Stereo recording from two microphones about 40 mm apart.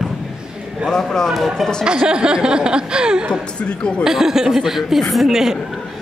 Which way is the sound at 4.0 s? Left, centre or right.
Centre.